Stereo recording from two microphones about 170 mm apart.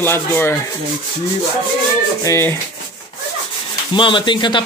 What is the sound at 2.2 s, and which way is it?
Rub, 15° left (ahead or behind).